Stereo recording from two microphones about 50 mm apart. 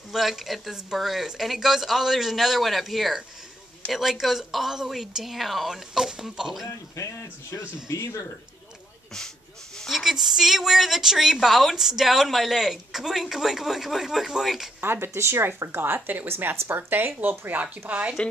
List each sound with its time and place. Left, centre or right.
0.1 s speech: centre
7.0 s speech: left
9.8 s speech: centre
14.8 s speech: right
17.8 s speech: right